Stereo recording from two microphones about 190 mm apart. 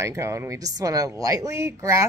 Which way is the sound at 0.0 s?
15° right (ahead or behind).